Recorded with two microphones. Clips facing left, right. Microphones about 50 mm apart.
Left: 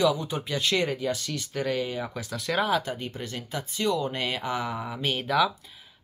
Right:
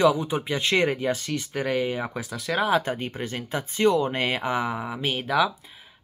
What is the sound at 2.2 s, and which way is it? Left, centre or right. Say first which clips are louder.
Speech: left 1 dB; centre.